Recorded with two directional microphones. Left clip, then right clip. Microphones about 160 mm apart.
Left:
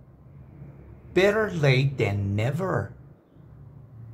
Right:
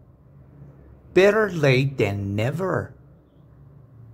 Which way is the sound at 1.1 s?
30° right (ahead or behind).